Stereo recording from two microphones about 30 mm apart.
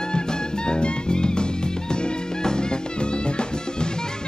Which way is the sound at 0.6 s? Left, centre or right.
Left.